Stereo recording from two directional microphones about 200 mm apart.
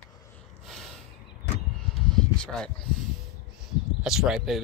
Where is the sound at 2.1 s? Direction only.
5° left (ahead or behind).